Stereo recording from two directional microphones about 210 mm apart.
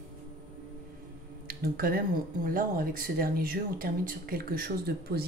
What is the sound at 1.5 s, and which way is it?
Speech, 45° right (ahead or behind).